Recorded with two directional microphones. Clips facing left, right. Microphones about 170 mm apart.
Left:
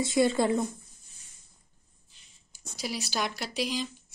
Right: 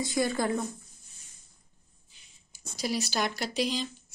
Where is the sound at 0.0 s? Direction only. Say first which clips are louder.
Left 4 dB; 25° left (ahead or behind).